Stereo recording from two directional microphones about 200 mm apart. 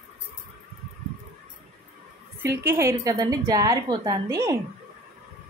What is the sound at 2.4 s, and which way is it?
A woman's voice, 15° right (ahead or behind).